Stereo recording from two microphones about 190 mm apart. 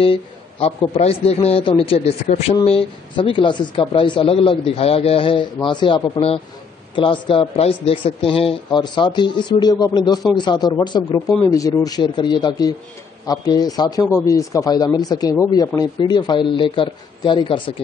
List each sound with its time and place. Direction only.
0.0 s a man's voice: 30° left (ahead or behind)